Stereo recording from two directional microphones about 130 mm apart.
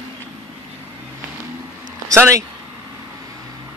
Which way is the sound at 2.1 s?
25° right (ahead or behind).